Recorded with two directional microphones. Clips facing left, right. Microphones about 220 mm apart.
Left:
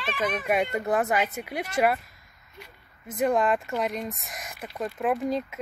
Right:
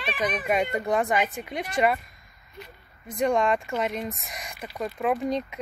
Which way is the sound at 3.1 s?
5° left (ahead or behind).